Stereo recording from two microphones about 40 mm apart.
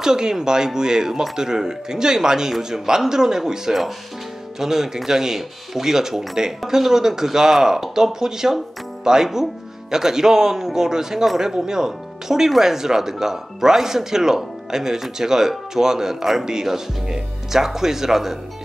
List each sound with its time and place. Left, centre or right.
0.0 s speech: centre